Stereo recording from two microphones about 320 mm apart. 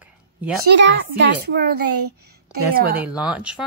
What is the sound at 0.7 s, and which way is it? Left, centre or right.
Speech, right.